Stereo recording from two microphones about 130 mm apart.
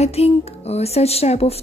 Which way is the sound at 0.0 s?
55° left (ahead or behind).